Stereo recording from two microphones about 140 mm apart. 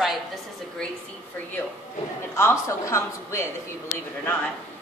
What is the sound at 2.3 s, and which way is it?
Speech, 20° left (ahead or behind).